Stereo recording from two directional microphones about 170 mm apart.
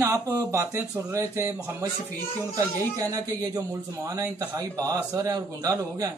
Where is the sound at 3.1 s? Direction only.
20° right (ahead or behind).